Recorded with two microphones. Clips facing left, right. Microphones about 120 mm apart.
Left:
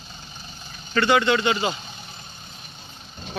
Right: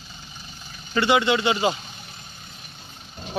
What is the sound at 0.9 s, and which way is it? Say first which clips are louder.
Speech: left 1 dB; 20° right (ahead or behind).